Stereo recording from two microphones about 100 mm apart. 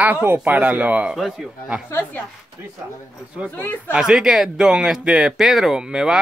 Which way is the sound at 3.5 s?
15° left (ahead or behind).